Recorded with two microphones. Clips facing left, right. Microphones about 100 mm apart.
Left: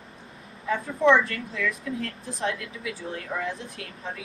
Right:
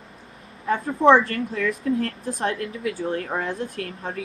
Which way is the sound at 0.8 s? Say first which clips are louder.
Right 4 dB; 30° right (ahead or behind).